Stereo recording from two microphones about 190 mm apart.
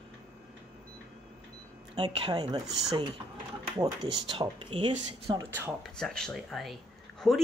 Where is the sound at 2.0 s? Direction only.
30° right (ahead or behind).